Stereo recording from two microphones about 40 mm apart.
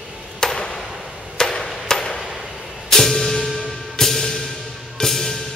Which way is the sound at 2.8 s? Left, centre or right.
Centre.